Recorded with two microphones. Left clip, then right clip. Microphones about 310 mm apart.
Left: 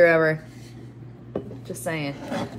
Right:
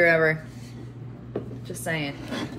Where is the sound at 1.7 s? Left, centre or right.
Left.